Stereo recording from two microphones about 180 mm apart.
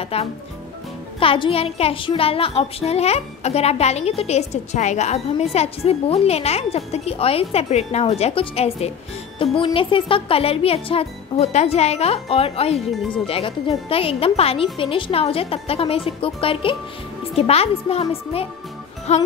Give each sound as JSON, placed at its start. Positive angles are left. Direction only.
{"t": 0.0, "sound": "speech", "side_deg": 35}
{"t": 1.2, "sound": "child singing", "side_deg": 30}
{"t": 12.7, "sound": "speech", "side_deg": 0}
{"t": 13.3, "sound": "child singing", "side_deg": 30}